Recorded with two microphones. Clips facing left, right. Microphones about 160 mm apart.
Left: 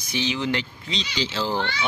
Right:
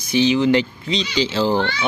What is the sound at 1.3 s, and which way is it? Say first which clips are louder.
Speech: right 7 dB; 35° right (ahead or behind).